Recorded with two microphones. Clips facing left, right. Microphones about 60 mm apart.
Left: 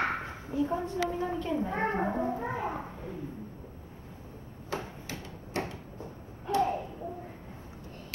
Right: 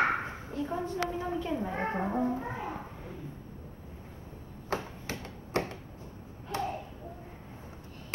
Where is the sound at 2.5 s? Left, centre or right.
Centre.